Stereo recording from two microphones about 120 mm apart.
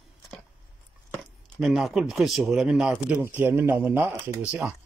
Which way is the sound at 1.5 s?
Centre (ahead or behind).